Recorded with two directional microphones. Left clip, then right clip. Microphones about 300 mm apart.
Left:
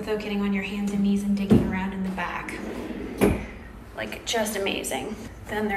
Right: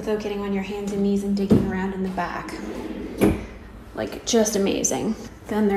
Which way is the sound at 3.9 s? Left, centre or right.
Centre.